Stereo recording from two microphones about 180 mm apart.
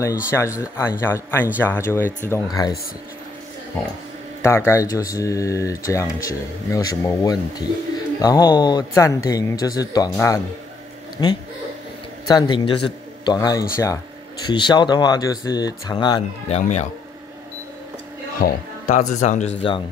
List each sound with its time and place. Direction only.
0.0 s speech: 15° left (ahead or behind)
3.8 s a man's voice: 10° left (ahead or behind); by 16.8 s 40° left (ahead or behind)
18.4 s speech: 45° left (ahead or behind)